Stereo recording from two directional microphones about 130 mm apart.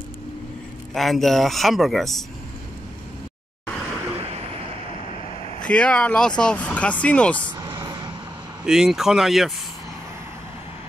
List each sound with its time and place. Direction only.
0.9 s a man's voice: centre (ahead or behind)
5.6 s speech: 10° left (ahead or behind)
7.5 s vehicle: 35° right (ahead or behind)
8.6 s a man's voice: 5° right (ahead or behind)